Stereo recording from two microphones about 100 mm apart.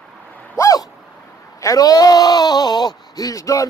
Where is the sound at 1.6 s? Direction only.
35° left (ahead or behind).